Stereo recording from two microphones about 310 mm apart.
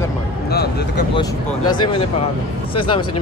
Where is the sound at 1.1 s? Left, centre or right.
Centre.